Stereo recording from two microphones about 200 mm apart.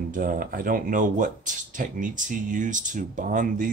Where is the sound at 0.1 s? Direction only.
45° right (ahead or behind).